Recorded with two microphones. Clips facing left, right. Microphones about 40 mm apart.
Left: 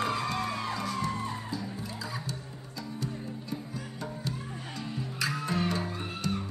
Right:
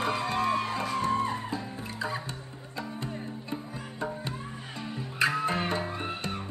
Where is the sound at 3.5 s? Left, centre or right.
Right.